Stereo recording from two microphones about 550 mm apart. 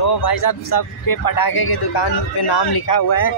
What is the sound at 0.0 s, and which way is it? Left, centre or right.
A man's voice, left.